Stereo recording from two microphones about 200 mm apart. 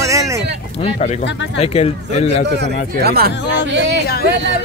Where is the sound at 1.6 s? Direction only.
30° left (ahead or behind).